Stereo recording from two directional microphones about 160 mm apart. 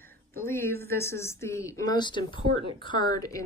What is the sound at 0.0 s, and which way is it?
A woman's voice, 15° left (ahead or behind).